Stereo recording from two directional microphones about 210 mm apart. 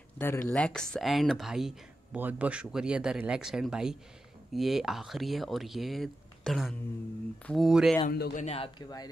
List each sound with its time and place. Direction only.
0.2 s speech: 10° left (ahead or behind)
8.1 s a man's voice: 45° left (ahead or behind)
8.5 s speech: 25° left (ahead or behind)